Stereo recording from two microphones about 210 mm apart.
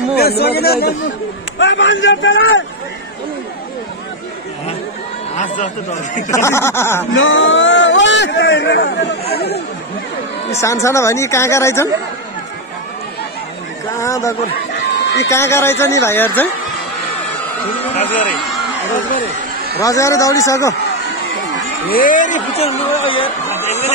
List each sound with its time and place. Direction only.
0.1 s speech: 50° left (ahead or behind)
1.6 s speech: 60° left (ahead or behind)
5.4 s speech: 35° left (ahead or behind)
6.3 s speech: 15° left (ahead or behind)
7.2 s speech: 65° left (ahead or behind)
10.6 s speech: 15° left (ahead or behind)
13.9 s speech: 15° left (ahead or behind)
14.7 s a sound: 55° left (ahead or behind)
15.2 s speech: 10° left (ahead or behind)
18.0 s speech: 5° left (ahead or behind)
19.8 s speech: 15° left (ahead or behind)
21.8 s speech: 45° left (ahead or behind)